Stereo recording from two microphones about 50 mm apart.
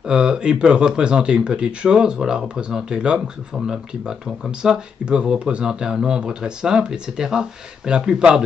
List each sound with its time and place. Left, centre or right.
0.0 s speech: centre